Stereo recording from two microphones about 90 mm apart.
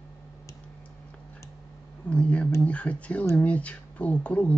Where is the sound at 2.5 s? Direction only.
15° left (ahead or behind).